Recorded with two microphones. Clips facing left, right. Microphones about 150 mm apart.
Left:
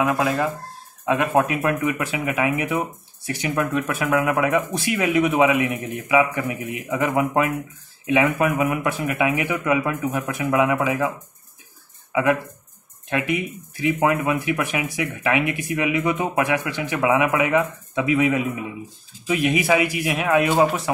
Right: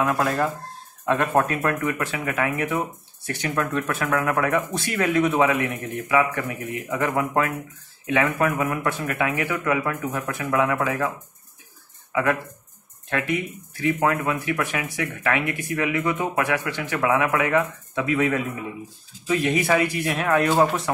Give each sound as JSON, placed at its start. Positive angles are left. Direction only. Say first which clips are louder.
{"t": 0.0, "sound": "speech", "louder": "left 1 dB", "side_deg": 5}
{"t": 12.1, "sound": "speech", "louder": "left 3 dB", "side_deg": 15}